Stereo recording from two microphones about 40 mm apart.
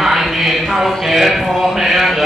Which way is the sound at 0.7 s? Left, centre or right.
Centre.